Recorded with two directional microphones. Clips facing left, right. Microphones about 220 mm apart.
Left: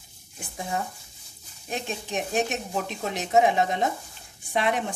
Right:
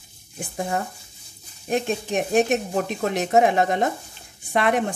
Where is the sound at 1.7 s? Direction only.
55° right (ahead or behind).